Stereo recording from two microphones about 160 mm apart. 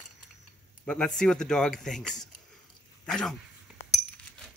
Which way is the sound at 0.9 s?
5° left (ahead or behind).